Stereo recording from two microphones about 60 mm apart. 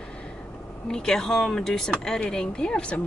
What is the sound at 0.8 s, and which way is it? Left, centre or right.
Speech, centre.